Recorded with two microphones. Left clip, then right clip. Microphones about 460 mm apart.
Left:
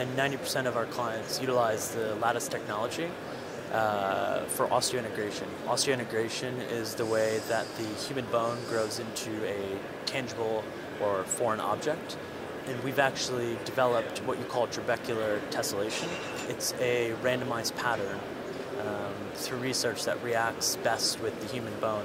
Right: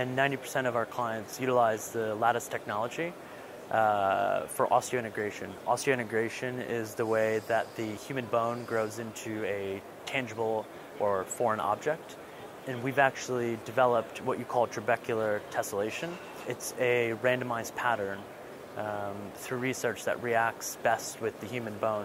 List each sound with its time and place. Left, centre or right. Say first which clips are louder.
0.0 s speech: right 1 dB; right
11.1 s speech: even; right
12.9 s speech: right 1 dB; right
19.6 s speech: left 1 dB; right